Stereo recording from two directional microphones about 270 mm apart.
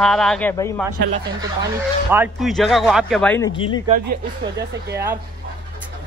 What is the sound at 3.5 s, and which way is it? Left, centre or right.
Speech, centre.